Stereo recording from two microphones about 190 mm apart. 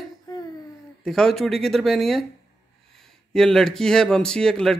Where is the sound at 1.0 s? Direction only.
Centre (ahead or behind).